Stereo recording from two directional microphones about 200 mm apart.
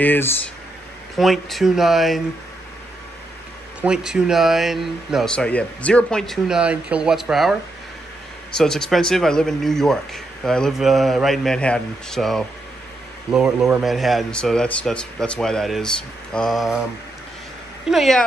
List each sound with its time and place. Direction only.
0.0 s a man's voice: 10° left (ahead or behind)
3.8 s a man's voice: 5° right (ahead or behind)
8.5 s a man's voice: 5° left (ahead or behind)
17.8 s a man's voice: centre (ahead or behind)